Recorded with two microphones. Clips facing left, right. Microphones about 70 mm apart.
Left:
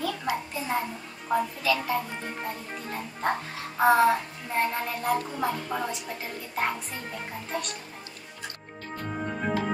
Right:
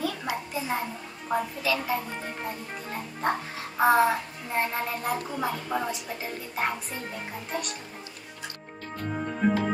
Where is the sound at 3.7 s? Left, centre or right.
Centre.